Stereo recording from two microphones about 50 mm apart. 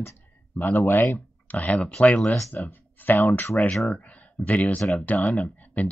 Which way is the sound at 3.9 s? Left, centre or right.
Left.